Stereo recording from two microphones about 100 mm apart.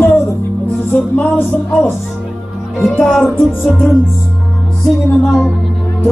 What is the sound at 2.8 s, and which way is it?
Speech, centre (ahead or behind).